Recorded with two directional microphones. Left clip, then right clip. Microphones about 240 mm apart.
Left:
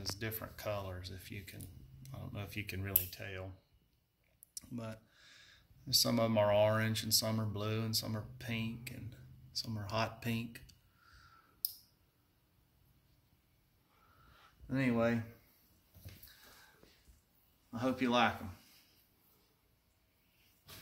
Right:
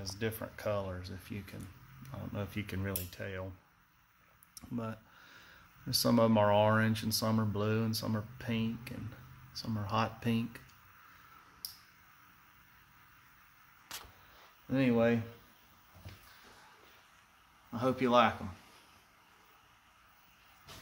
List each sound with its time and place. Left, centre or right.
0.0 s cutlery: right
4.6 s speech: right
9.5 s cutlery: right
14.7 s speech: right
17.7 s speech: right